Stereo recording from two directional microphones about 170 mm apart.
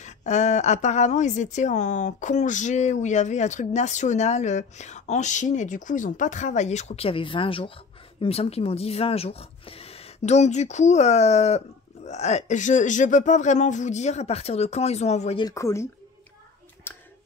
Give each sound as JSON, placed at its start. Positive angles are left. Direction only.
{"t": 0.0, "sound": "a woman's voice", "side_deg": 45}
{"t": 15.4, "sound": "speech", "side_deg": 15}
{"t": 16.9, "sound": "a sound", "side_deg": 15}